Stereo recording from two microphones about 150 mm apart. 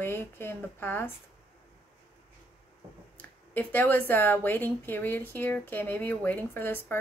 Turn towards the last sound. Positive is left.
turn(degrees=15)  # may be behind; listen again after turning